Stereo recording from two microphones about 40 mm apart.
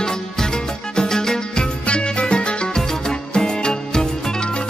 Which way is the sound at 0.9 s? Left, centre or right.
Centre.